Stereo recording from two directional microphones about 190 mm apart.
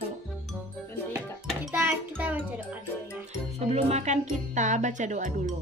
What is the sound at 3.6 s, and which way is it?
Speech, 35° right (ahead or behind).